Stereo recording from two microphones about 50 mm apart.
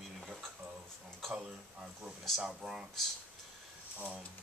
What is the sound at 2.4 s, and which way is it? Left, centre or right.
Speech, centre.